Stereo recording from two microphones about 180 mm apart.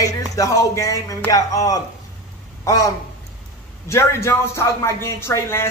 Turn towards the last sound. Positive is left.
turn(degrees=15)  # may be behind; listen again after turning